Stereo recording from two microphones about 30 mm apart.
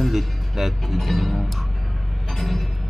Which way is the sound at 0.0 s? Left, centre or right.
Centre.